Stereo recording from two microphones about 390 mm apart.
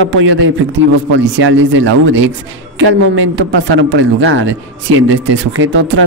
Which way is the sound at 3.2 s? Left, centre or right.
Right.